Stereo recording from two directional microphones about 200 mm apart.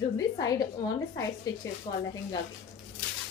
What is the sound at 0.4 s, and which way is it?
A woman's voice, 15° left (ahead or behind).